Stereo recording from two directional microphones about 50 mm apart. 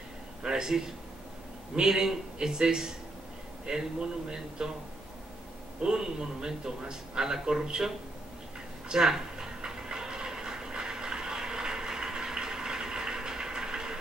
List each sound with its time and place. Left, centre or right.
0.4 s a man's voice: centre
5.8 s a man's voice: centre
8.8 s a sound: centre